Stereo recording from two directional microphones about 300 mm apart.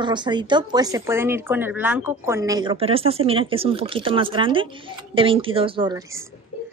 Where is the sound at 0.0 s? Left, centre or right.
Centre.